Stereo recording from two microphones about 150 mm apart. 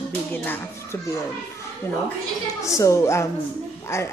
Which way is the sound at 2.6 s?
20° left (ahead or behind).